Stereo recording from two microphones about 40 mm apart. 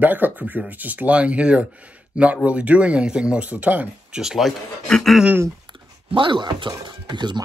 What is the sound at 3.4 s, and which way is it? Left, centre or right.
Speech, right.